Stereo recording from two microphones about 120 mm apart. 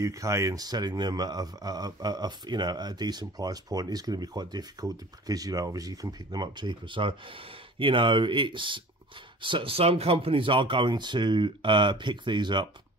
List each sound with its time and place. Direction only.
0.0 s speech: 25° right (ahead or behind)